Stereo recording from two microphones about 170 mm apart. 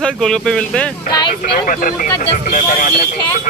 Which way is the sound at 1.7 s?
55° left (ahead or behind).